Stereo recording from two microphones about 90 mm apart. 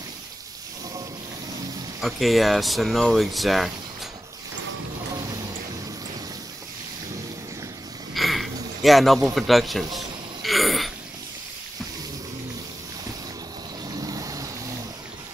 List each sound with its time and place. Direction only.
2.0 s speech: centre (ahead or behind)
8.1 s a sound: centre (ahead or behind)
13.8 s vehicle: 45° right (ahead or behind)